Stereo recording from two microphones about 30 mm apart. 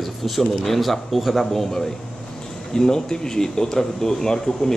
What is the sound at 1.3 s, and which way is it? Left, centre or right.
Speech, centre.